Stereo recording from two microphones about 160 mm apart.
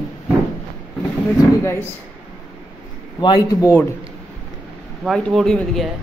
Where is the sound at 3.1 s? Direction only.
25° left (ahead or behind).